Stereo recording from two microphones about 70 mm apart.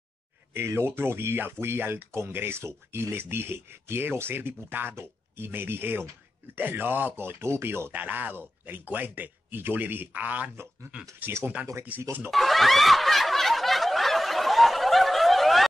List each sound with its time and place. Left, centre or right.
0.6 s speech: right
7.9 s speech: right
11.9 s speech: right
12.3 s snicker: centre